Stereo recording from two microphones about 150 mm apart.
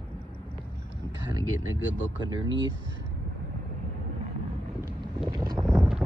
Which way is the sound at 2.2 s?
30° right (ahead or behind).